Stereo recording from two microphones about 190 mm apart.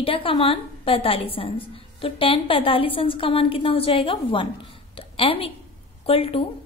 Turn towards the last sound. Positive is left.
turn(degrees=30)  # may be behind; listen again after turning